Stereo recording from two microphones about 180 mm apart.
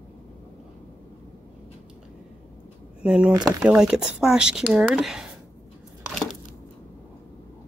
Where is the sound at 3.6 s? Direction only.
5° right (ahead or behind).